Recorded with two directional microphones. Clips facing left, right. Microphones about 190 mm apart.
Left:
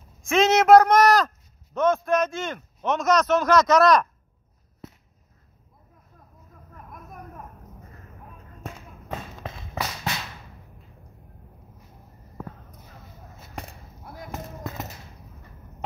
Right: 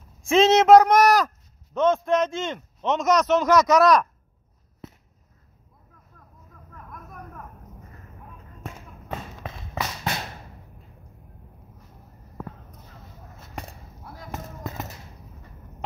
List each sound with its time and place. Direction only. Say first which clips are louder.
0.2 s a man's voice: right 2 dB; 30° right (ahead or behind); by 4.1 s 10° right (ahead or behind)
10.1 s whip: right 2 dB; 50° right (ahead or behind)